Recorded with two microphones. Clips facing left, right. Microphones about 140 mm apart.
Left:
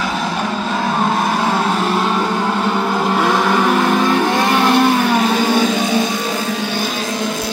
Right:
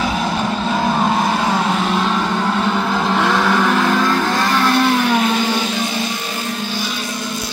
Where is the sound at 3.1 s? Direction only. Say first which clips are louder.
Left 1 dB; 15° left (ahead or behind).